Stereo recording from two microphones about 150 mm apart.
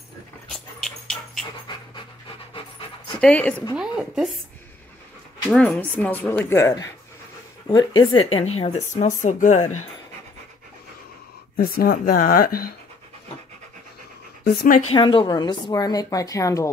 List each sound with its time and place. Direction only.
0.5 s dog: 5° left (ahead or behind)
1.7 s pant: 30° left (ahead or behind)
3.2 s speech: 10° left (ahead or behind)
3.7 s a woman's voice: 5° right (ahead or behind)
5.5 s speech: 10° left (ahead or behind); by 9.6 s 55° left (ahead or behind)
11.5 s speech: 80° left
14.4 s speech: 85° left
15.0 s a woman's voice: 30° left (ahead or behind)